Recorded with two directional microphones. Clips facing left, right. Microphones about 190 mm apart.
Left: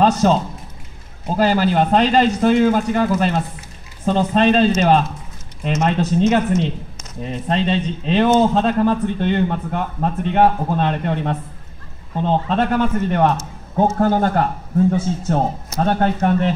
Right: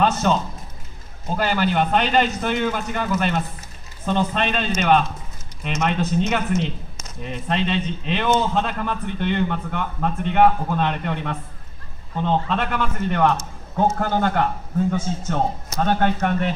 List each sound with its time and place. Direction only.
0.0 s a man's voice: 35° left (ahead or behind)